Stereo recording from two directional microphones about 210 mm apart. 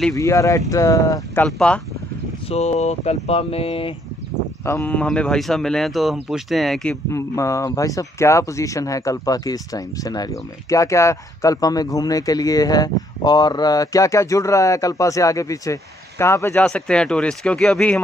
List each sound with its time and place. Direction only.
0.1 s speech: 15° left (ahead or behind)
2.5 s speech: 30° left (ahead or behind)
4.6 s speech: 10° left (ahead or behind)